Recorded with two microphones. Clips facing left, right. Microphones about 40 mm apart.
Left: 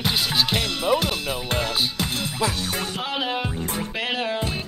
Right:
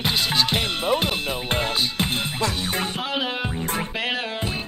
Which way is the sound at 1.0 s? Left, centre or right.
Right.